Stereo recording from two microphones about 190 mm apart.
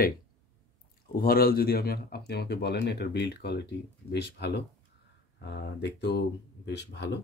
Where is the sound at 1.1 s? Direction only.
50° left (ahead or behind); by 7.1 s 65° left (ahead or behind).